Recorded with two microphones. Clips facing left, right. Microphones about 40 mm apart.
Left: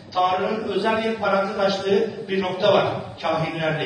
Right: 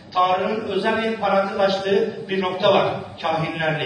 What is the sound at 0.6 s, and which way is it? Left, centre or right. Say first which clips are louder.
A man's voice: even; centre.